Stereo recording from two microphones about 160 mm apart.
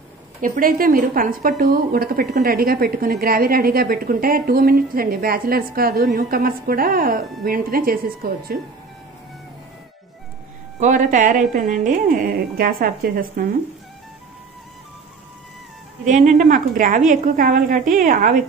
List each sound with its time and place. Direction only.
0.4 s a woman's voice: 60° right (ahead or behind)
10.8 s speech: 50° right (ahead or behind)
16.1 s speech: 50° right (ahead or behind)